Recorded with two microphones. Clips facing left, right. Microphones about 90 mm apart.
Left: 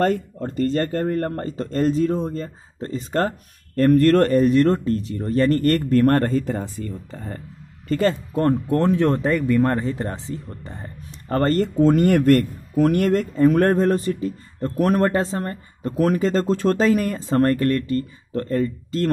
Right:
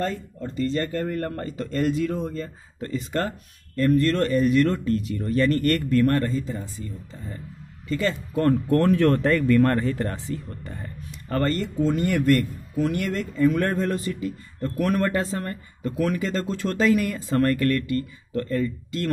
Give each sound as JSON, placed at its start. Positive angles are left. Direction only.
{"t": 0.0, "sound": "speech", "side_deg": 60}
{"t": 7.9, "sound": "speech", "side_deg": 45}
{"t": 8.4, "sound": "speech", "side_deg": 25}